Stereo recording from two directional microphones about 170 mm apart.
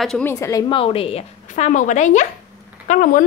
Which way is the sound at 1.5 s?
50° left (ahead or behind).